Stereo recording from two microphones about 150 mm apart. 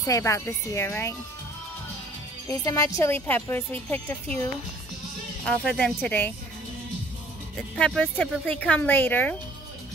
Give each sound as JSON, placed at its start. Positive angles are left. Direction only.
{"t": 0.0, "sound": "speech", "side_deg": 20}
{"t": 2.4, "sound": "speech", "side_deg": 25}
{"t": 7.5, "sound": "speech", "side_deg": 5}